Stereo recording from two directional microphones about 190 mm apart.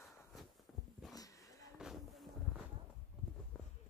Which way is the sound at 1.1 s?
20° left (ahead or behind).